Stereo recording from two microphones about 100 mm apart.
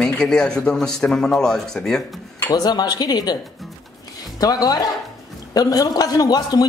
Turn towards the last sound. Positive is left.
turn(degrees=40)  # may be behind; listen again after turning